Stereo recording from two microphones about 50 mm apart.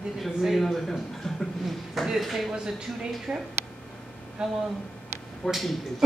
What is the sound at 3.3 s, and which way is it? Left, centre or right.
Speech, right.